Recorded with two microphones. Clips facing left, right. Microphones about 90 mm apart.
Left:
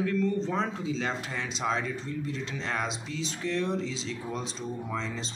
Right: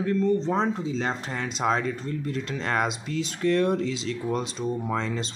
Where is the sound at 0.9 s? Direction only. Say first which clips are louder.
Right 3 dB; 45° right (ahead or behind).